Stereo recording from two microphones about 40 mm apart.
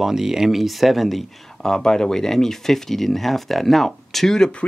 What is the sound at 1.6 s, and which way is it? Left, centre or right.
Speech, centre.